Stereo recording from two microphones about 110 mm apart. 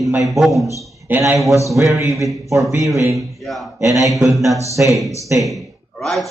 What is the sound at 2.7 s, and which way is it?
Speech, 30° right (ahead or behind).